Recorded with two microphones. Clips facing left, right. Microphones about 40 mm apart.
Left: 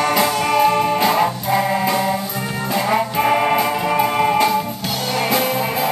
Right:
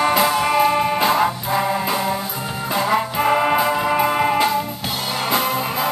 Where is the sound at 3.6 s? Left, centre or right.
Centre.